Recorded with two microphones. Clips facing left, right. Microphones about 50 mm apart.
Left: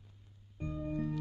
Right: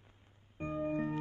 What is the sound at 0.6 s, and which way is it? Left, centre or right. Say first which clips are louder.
Music: right 3 dB; right.